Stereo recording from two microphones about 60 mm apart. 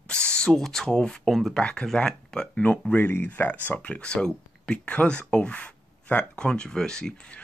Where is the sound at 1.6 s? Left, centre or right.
Centre.